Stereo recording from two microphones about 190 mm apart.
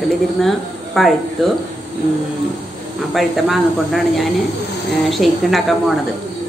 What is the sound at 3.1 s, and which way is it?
Speech, centre (ahead or behind).